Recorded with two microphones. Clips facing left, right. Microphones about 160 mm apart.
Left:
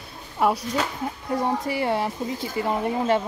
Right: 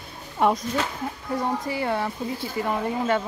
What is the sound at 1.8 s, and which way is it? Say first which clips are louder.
Speech: left 2 dB; 20° left (ahead or behind).